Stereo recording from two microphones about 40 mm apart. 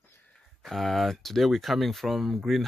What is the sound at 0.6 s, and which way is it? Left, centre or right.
Speech, centre.